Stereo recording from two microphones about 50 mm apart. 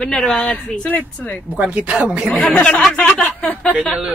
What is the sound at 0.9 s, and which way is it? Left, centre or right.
Speech, left.